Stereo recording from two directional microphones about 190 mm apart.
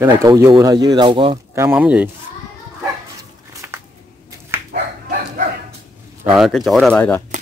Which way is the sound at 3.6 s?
10° right (ahead or behind).